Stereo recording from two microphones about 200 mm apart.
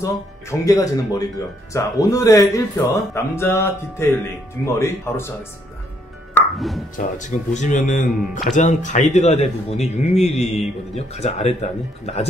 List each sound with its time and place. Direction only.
0.0 s speech: 15° left (ahead or behind)
6.3 s music: centre (ahead or behind)
7.0 s a man's voice: 35° left (ahead or behind)